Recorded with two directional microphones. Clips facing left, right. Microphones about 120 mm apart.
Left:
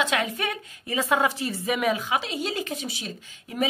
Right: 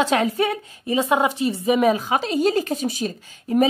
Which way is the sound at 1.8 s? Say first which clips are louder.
Right 4 dB; 35° right (ahead or behind).